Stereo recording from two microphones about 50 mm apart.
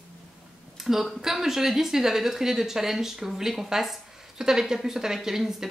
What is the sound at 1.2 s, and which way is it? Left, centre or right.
Speech, centre.